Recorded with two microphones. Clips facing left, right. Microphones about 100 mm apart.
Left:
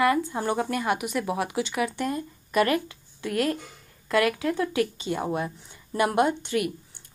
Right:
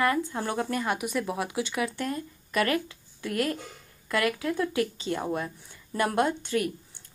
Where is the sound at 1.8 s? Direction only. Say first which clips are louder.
Left 3 dB; 20° left (ahead or behind).